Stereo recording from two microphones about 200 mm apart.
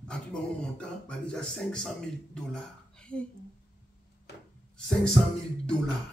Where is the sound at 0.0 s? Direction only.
5° left (ahead or behind).